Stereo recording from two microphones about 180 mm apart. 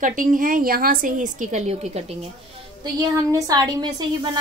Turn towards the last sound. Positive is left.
turn(degrees=-20)  # may be behind; listen again after turning